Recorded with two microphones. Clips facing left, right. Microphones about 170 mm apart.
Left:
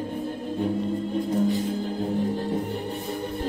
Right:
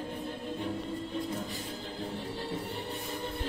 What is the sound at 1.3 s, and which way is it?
Music, 40° left (ahead or behind).